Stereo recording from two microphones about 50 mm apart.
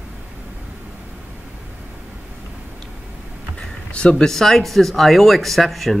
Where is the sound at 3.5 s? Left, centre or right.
Left.